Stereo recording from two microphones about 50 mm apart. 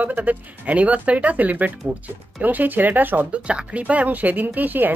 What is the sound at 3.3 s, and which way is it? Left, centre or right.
Speech, right.